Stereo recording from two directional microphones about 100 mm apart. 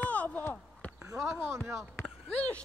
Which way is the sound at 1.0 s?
30° right (ahead or behind).